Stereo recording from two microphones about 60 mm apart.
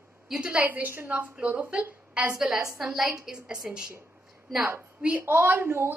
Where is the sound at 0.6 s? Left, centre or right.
Right.